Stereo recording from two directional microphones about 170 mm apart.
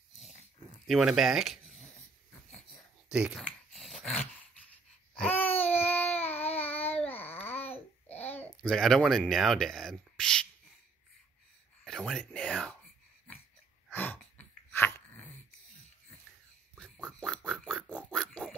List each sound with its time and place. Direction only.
0.2 s dog: 40° left (ahead or behind)
0.8 s speech: centre (ahead or behind)
3.1 s speech: 5° right (ahead or behind)
3.4 s dog: centre (ahead or behind)
6.3 s a sound: 35° left (ahead or behind)
6.9 s babbling: 10° left (ahead or behind)
8.1 s babbling: 40° left (ahead or behind)
8.4 s speech: 5° left (ahead or behind)
11.8 s a sound: centre (ahead or behind)
13.8 s a sound: 10° left (ahead or behind)
14.7 s dog: 15° left (ahead or behind)
16.7 s pig: centre (ahead or behind)